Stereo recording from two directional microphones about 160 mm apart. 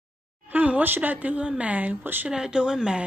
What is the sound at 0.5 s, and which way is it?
Speech, 10° right (ahead or behind).